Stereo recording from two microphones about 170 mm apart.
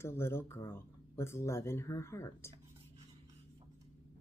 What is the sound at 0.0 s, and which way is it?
Speech, 15° left (ahead or behind).